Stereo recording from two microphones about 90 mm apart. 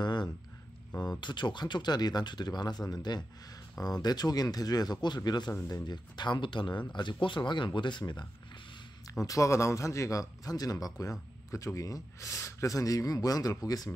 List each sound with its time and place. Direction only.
0.0 s a sound: 55° left (ahead or behind)
1.2 s speech: 60° left (ahead or behind)
9.2 s speech: 35° left (ahead or behind)